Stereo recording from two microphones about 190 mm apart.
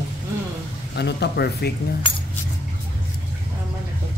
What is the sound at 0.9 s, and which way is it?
Speech, 60° left (ahead or behind).